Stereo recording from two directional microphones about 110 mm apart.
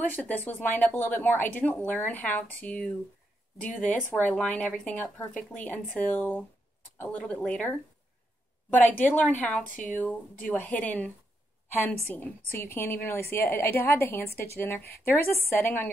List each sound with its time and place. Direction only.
0.0 s a woman's voice: 15° left (ahead or behind)